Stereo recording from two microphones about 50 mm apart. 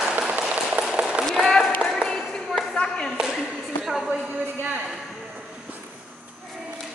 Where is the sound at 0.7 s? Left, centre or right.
Centre.